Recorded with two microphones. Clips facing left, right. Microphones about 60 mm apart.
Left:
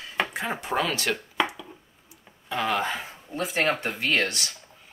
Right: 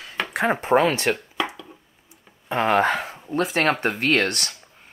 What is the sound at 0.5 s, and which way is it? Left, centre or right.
Speech, right.